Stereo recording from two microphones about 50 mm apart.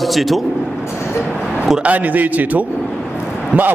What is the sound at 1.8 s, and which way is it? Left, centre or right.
A man's voice, right.